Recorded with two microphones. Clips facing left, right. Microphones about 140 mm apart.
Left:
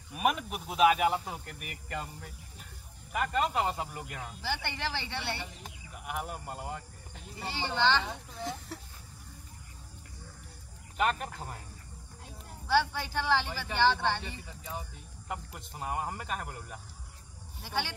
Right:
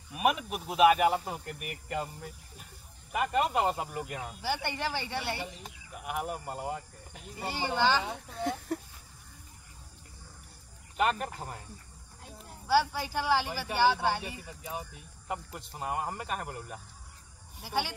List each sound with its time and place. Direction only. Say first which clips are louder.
0.1 s speech: right 1 dB; centre (ahead or behind)
8.3 s speech: right 6 dB; 55° right (ahead or behind)
11.0 s speech: right 1 dB; centre (ahead or behind)
12.3 s speech: right 2 dB; 5° right (ahead or behind)
15.2 s speech: right 2 dB; centre (ahead or behind)